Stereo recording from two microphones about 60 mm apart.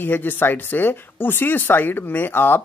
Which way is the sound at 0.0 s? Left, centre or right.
Left.